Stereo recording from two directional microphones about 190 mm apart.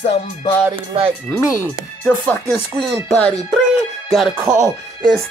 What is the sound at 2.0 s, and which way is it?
Music, 5° left (ahead or behind).